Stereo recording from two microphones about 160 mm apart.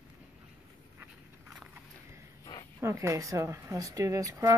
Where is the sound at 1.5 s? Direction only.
5° right (ahead or behind).